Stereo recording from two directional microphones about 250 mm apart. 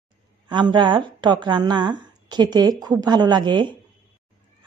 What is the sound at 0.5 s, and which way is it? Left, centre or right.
A woman's voice, centre.